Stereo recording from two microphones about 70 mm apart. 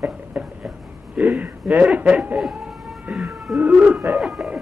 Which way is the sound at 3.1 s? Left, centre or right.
Centre.